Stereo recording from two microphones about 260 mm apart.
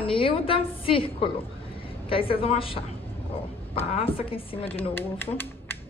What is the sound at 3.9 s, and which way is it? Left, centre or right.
Speech, left.